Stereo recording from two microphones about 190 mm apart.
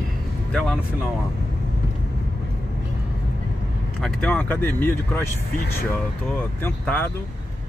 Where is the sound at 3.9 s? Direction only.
5° left (ahead or behind).